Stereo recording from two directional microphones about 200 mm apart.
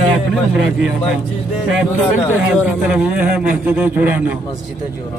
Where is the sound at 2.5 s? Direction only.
5° right (ahead or behind).